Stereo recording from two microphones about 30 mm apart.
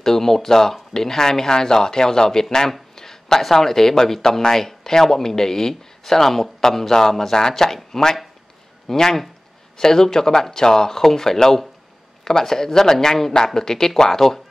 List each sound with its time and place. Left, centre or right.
0.0 s speech: centre